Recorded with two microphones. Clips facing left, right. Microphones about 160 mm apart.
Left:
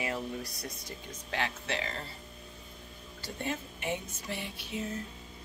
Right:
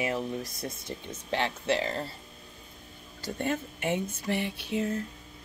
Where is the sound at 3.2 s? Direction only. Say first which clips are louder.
Right 6 dB; 50° right (ahead or behind).